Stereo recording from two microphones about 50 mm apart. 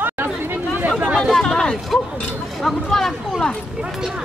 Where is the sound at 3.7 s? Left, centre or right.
Centre.